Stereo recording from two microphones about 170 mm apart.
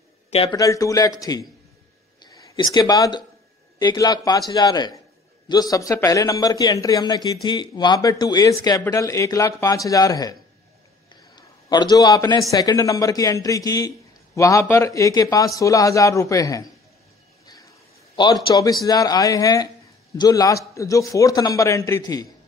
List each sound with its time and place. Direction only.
0.3 s speech: 35° left (ahead or behind)
0.6 s a man's voice: 20° left (ahead or behind)
11.3 s a man's voice: 25° left (ahead or behind)
18.1 s a man's voice: 25° left (ahead or behind)